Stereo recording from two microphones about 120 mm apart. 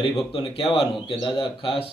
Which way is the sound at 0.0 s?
45° left (ahead or behind).